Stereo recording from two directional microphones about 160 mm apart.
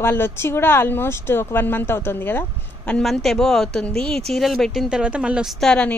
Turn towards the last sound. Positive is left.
turn(degrees=5)  # may be behind; listen again after turning